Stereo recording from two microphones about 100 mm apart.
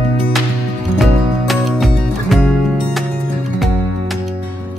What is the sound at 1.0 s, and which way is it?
Music, centre (ahead or behind).